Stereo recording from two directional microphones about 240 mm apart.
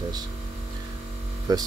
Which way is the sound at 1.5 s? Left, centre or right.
Centre.